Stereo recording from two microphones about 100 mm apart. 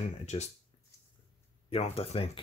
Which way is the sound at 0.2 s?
90° left.